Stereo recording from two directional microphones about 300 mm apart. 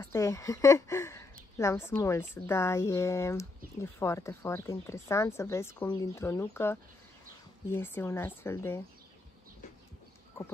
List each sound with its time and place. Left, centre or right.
0.0 s speech: centre